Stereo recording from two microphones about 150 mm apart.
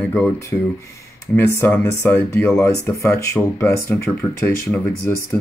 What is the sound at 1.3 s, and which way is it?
Speech, 15° left (ahead or behind).